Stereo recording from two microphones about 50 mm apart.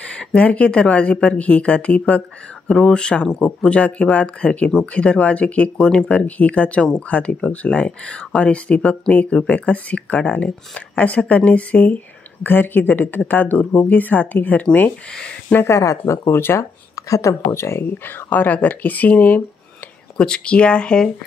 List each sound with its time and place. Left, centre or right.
0.0 s speech: left
2.7 s speech: centre
12.4 s speech: left
15.6 s speech: left
16.3 s speech: left
17.1 s speech: left
17.9 s speech: left
20.2 s speech: centre